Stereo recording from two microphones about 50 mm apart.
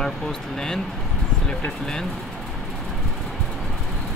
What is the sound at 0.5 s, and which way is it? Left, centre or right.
Speech, centre.